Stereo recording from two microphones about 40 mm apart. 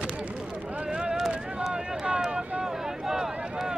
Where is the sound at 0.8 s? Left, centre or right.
Right.